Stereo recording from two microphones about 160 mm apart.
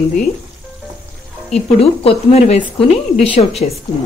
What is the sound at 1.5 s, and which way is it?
Speech, 40° left (ahead or behind).